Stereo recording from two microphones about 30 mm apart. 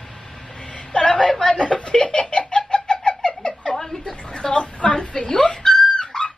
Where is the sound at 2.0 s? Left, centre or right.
Left.